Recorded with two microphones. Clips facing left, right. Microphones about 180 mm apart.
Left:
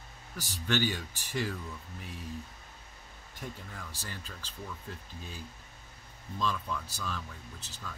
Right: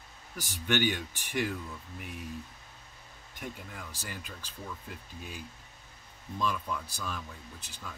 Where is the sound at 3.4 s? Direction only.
10° right (ahead or behind).